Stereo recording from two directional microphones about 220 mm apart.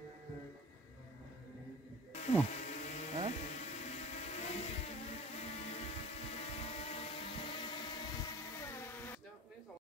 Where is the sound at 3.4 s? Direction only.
30° left (ahead or behind); by 9.2 s 10° left (ahead or behind).